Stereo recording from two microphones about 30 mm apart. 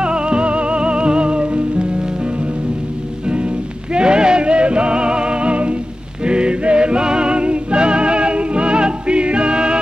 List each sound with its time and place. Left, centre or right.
0.0 s music: right
3.3 s music: right